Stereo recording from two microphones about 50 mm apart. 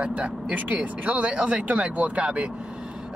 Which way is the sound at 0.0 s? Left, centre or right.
Right.